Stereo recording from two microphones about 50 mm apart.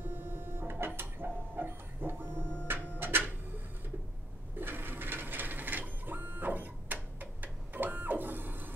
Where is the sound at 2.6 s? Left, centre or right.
Right.